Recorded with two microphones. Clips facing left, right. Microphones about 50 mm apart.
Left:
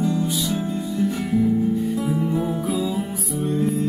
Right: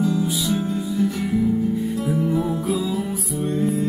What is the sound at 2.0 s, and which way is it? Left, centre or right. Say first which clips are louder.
Music: right 1 dB; centre.